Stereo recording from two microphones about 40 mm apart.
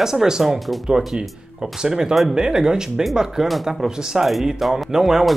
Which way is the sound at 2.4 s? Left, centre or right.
Centre.